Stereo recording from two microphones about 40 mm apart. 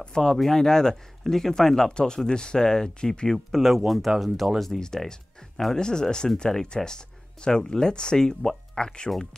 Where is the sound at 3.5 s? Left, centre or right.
Centre.